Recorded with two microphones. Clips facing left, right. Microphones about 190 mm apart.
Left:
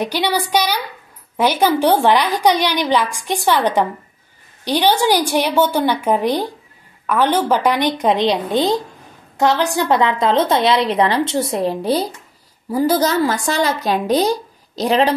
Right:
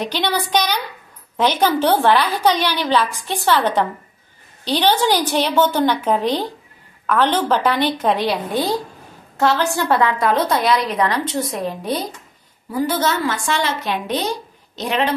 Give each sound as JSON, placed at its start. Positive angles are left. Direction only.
{"t": 0.0, "sound": "a woman's voice", "side_deg": 10}